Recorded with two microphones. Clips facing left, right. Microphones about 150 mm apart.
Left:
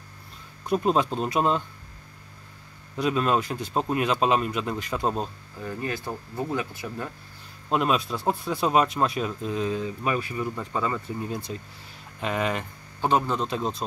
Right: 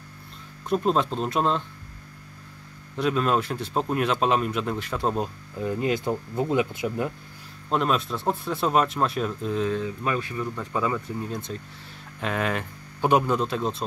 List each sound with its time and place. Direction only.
0.7 s speech: 5° left (ahead or behind)
3.0 s speech: centre (ahead or behind)
5.6 s speech: 20° right (ahead or behind)
7.7 s speech: 5° left (ahead or behind)
10.7 s speech: 5° right (ahead or behind)
11.2 s speech: 5° left (ahead or behind)
13.0 s speech: 10° right (ahead or behind)